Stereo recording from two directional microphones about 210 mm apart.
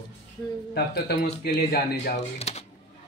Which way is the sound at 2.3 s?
30° left (ahead or behind).